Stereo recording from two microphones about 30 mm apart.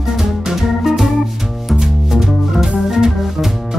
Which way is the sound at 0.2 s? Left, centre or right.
Centre.